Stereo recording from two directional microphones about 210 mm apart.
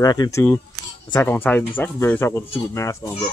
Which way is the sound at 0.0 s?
20° left (ahead or behind).